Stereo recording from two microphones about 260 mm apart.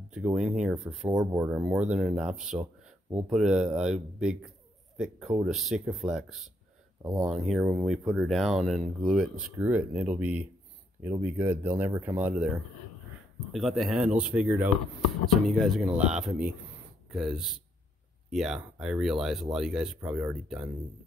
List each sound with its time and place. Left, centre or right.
0.1 s speech: centre
2.5 s speech: centre
3.3 s speech: centre
13.5 s speech: centre